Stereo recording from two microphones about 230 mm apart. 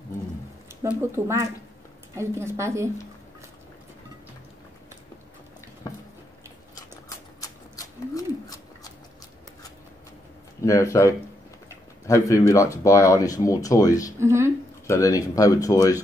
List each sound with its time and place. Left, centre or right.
0.7 s a woman's voice: centre
6.7 s a sound: centre
10.6 s speech: centre
14.2 s a woman's voice: centre
14.9 s speech: centre